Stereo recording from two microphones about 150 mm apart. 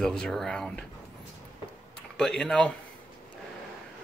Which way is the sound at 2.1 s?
5° left (ahead or behind).